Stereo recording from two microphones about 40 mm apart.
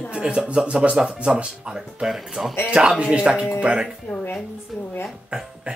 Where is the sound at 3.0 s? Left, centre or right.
Right.